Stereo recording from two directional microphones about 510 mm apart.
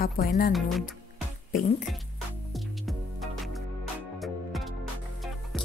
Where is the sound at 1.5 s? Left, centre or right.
Centre.